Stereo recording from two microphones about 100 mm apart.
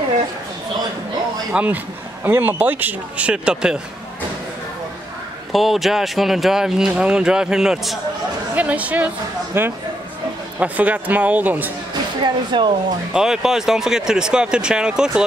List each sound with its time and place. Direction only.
1.5 s speech: 15° right (ahead or behind)
5.5 s speech: centre (ahead or behind)
8.5 s speech: 15° right (ahead or behind)
12.2 s speech: 50° right (ahead or behind)
13.1 s speech: 5° right (ahead or behind)